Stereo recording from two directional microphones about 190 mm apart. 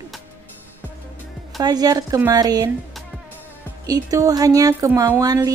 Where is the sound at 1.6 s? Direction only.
20° right (ahead or behind).